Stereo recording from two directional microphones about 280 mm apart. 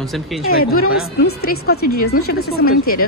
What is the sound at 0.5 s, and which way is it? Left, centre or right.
Speech, left.